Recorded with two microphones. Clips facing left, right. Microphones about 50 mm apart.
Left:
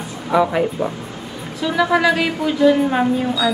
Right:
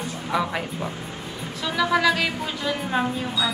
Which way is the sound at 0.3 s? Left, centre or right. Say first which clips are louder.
Left 9 dB; centre.